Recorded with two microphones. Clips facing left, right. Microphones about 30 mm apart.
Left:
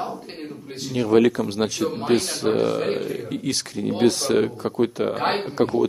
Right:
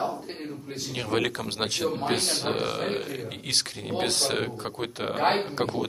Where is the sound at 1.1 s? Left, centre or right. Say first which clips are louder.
Left 10 dB; right.